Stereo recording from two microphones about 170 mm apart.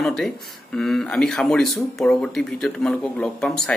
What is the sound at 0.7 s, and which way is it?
Speech, centre (ahead or behind).